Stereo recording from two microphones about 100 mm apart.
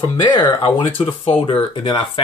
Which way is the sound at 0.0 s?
45° left (ahead or behind).